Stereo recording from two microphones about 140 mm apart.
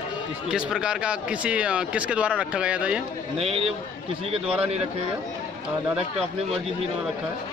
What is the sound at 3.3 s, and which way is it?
Speech, 45° right (ahead or behind).